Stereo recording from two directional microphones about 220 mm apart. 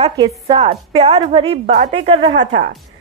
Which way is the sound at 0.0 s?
25° right (ahead or behind).